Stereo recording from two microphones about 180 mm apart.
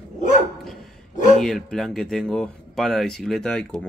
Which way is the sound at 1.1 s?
45° left (ahead or behind).